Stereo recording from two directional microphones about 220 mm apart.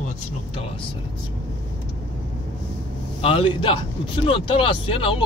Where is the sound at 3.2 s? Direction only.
25° left (ahead or behind).